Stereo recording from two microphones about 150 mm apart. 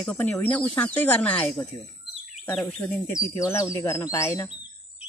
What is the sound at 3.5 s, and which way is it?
Speech, 20° left (ahead or behind).